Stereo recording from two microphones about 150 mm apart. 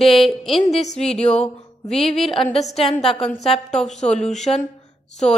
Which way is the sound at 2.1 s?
40° left (ahead or behind).